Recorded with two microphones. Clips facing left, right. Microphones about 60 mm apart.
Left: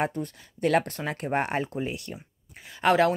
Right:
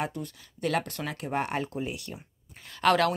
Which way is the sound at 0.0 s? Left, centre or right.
Left.